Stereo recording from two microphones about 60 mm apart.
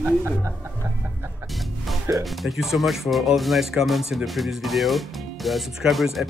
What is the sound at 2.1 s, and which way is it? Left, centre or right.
Speech, centre.